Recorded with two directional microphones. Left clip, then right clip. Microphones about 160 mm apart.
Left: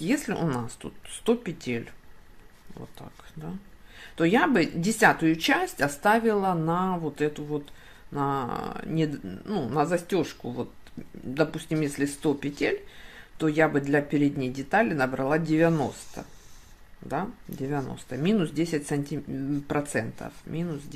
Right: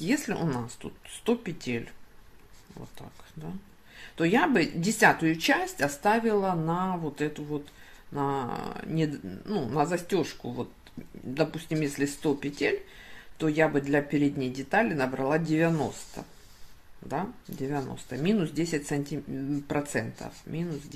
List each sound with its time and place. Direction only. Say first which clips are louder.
0.0 s speech: left 1 dB; 15° left (ahead or behind)
3.0 s speech: left 2 dB; 15° left (ahead or behind)
17.1 s speech: left 2 dB; 15° left (ahead or behind)